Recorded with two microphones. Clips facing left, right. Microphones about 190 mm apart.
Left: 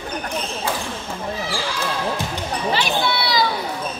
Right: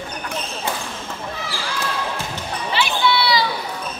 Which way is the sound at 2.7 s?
40° left (ahead or behind).